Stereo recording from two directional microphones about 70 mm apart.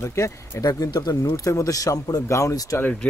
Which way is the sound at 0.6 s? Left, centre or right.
Left.